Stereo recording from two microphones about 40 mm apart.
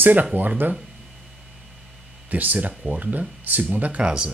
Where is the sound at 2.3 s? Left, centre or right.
Right.